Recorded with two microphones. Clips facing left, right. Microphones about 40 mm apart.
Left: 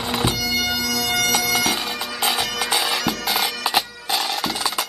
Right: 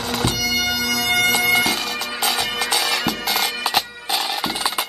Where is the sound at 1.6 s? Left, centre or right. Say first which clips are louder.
Right 1 dB; centre.